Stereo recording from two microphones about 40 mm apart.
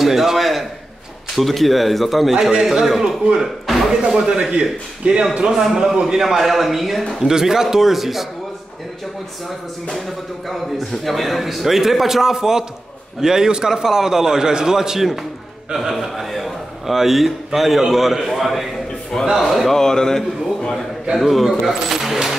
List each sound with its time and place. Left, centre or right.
0.0 s a man's voice: centre
2.3 s a man's voice: centre
3.6 s a sound: centre
4.1 s a man's voice: right; by 8.3 s centre
9.9 s a man's voice: centre
19.7 s speech: centre
21.2 s a man's voice: centre